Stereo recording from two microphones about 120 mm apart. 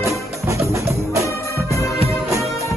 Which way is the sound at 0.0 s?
25° right (ahead or behind).